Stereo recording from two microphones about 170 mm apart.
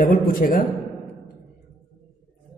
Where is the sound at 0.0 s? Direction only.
55° left (ahead or behind).